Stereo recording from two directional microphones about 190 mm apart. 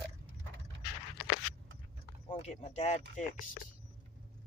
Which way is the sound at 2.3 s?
35° left (ahead or behind).